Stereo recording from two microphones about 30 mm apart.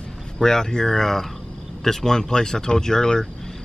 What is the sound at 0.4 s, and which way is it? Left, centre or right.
Speech, centre.